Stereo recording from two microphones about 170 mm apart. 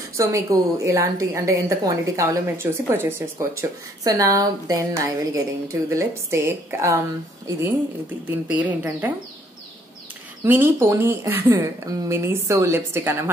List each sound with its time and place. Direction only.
0.2 s a woman's voice: 20° right (ahead or behind)
8.3 s a woman's voice: 10° right (ahead or behind)
10.4 s a woman's voice: 15° right (ahead or behind)